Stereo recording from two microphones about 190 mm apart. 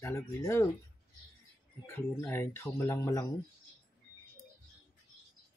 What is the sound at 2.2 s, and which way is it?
Speech, 15° left (ahead or behind).